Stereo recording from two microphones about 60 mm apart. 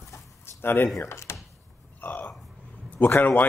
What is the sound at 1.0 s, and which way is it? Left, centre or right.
Speech, left.